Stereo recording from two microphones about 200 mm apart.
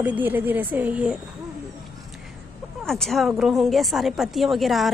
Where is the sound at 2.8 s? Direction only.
Centre (ahead or behind).